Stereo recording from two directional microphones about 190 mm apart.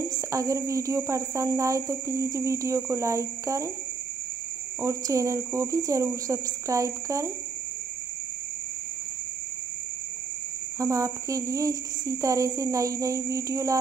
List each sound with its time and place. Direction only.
0.3 s speech: 15° right (ahead or behind)
4.8 s speech: 15° right (ahead or behind)
10.8 s speech: 15° right (ahead or behind)